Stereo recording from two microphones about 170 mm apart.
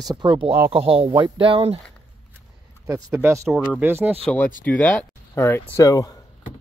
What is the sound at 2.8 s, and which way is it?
Speech, 15° right (ahead or behind).